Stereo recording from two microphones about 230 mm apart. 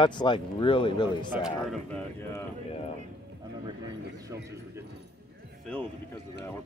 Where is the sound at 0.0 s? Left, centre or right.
Left.